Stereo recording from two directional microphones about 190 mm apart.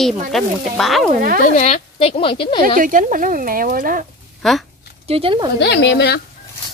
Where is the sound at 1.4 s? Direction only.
40° left (ahead or behind).